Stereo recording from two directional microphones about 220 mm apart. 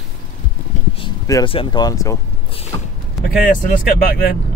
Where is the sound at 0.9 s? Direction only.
20° left (ahead or behind).